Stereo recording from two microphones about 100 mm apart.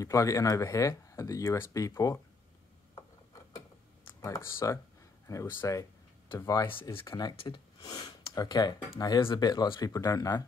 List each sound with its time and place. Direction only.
0.0 s speech: 30° left (ahead or behind)
4.2 s speech: 30° left (ahead or behind)
6.7 s speech: 60° left (ahead or behind); by 10.4 s 35° left (ahead or behind)